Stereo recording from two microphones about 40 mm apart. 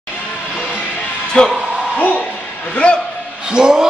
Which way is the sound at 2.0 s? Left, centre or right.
Left.